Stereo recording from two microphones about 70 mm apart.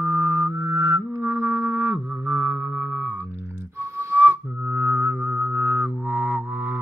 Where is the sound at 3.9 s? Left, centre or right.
Right.